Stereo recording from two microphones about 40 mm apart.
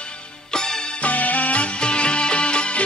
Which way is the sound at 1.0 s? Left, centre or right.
Left.